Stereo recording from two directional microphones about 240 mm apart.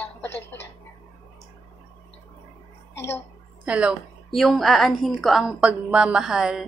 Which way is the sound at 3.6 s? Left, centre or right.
Centre.